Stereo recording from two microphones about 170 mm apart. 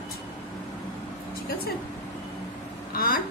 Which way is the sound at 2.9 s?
60° left (ahead or behind).